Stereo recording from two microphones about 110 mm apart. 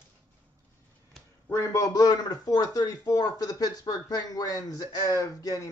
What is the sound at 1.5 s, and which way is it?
Speech, 30° left (ahead or behind).